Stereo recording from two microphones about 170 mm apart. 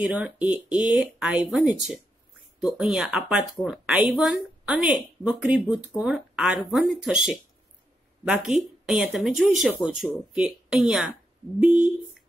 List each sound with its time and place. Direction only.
0.0 s speech: 10° right (ahead or behind)